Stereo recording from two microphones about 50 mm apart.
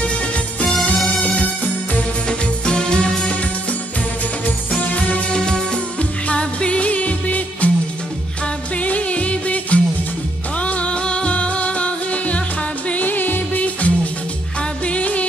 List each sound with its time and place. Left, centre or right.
0.9 s music: centre
2.2 s music: centre
4.7 s music: left
5.3 s music: centre
8.8 s music: left
12.9 s music: left